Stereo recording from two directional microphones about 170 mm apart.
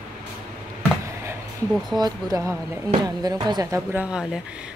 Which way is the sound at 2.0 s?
20° right (ahead or behind).